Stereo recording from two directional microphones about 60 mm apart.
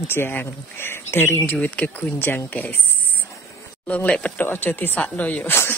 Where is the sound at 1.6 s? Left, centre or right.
Left.